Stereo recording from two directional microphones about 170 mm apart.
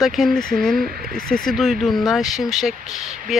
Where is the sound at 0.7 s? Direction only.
60° right (ahead or behind).